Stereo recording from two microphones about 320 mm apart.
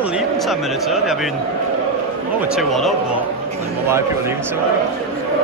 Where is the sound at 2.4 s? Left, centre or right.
Centre.